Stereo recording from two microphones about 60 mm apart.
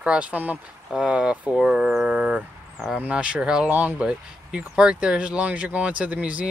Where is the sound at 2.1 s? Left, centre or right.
Centre.